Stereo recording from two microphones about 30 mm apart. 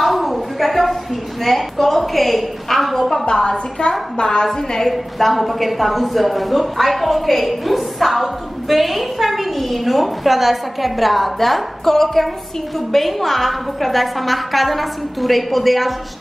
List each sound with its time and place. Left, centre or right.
0.0 s a sound: centre
3.3 s a woman's voice: left
4.5 s a woman's voice: centre
5.2 s a woman's voice: centre